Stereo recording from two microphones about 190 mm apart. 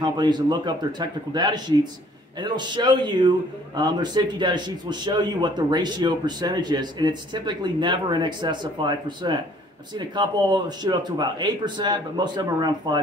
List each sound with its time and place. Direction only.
0.0 s a man's voice: 20° right (ahead or behind)